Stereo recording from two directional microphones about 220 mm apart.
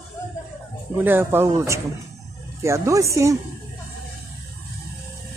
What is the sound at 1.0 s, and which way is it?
Speech, 10° right (ahead or behind).